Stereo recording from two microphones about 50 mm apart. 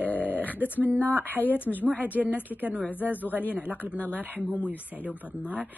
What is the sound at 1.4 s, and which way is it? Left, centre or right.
Speech, left.